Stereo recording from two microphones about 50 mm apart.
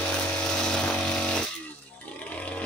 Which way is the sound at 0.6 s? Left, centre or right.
Centre.